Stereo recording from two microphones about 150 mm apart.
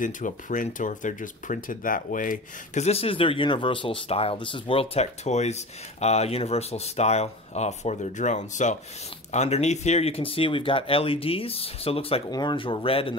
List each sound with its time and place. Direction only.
0.0 s speech: 60° left (ahead or behind); by 12.2 s 40° left (ahead or behind)
12.3 s speech: 30° left (ahead or behind)